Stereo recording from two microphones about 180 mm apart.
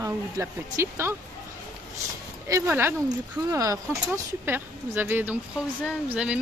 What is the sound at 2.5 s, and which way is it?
Speech, 15° right (ahead or behind).